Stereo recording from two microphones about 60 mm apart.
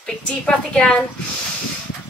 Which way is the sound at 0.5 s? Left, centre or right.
Centre.